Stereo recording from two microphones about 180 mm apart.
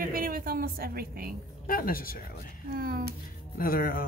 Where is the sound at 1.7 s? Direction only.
55° left (ahead or behind).